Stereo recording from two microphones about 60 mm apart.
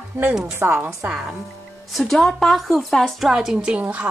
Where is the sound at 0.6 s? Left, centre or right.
Right.